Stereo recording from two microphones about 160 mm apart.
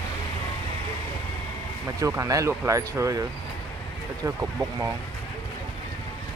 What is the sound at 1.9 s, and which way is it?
Speech, 20° right (ahead or behind).